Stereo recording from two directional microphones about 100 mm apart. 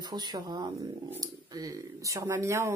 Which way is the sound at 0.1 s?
45° right (ahead or behind).